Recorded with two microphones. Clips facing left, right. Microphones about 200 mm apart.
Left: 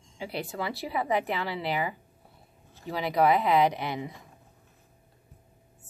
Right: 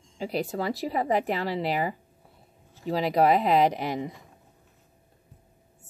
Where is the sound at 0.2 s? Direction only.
40° right (ahead or behind).